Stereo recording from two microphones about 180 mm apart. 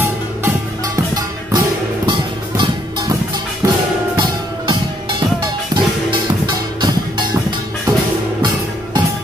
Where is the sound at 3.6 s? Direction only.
20° right (ahead or behind).